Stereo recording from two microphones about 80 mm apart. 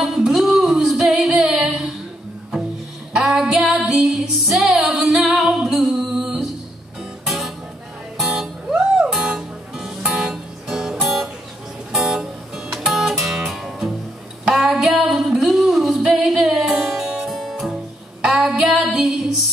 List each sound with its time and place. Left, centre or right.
0.0 s music: centre
3.2 s female singing: centre
7.2 s music: centre
14.4 s singing: centre
18.2 s female singing: centre